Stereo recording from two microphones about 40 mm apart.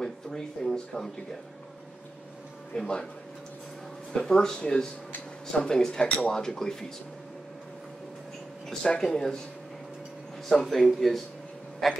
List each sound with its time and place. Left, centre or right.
0.0 s speech: centre
2.7 s speech: centre
4.3 s speech: centre
8.8 s speech: centre
10.5 s speech: centre